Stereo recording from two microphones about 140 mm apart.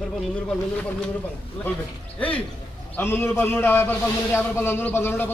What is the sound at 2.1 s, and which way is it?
A man's voice, 10° left (ahead or behind).